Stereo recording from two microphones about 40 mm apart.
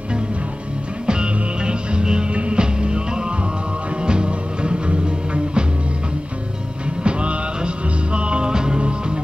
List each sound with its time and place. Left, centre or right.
1.0 s music: right
7.0 s music: right